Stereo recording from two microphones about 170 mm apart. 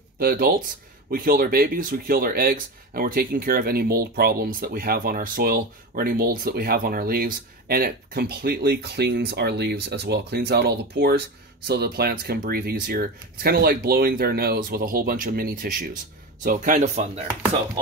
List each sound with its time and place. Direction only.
0.2 s speech: 60° right (ahead or behind); by 17.3 s 40° right (ahead or behind)